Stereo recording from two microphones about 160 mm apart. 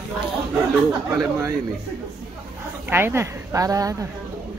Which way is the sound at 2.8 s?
15° right (ahead or behind).